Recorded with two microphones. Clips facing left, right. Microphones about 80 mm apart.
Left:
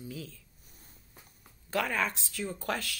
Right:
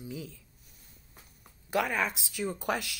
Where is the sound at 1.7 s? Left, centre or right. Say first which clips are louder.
Right 1 dB; centre.